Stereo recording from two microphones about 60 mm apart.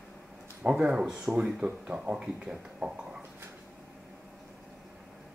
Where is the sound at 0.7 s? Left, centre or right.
Centre.